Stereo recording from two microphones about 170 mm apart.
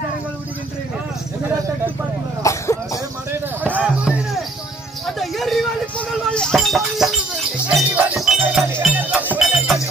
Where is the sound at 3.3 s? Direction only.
10° right (ahead or behind).